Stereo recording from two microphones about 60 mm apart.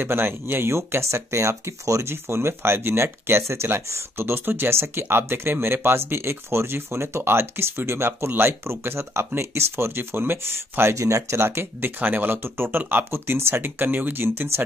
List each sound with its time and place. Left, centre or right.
0.0 s speech: right
11.1 s speech: right
11.3 s speech: right